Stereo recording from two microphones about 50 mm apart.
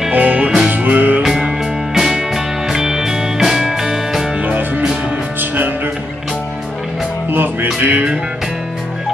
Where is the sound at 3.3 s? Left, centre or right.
Centre.